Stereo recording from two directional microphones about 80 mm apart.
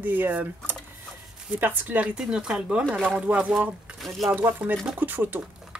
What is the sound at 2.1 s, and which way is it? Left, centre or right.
Speech, centre.